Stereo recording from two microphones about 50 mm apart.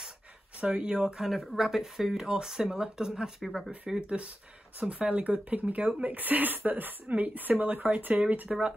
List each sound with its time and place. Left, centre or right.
0.6 s speech: centre
4.7 s speech: right
8.5 s speech: centre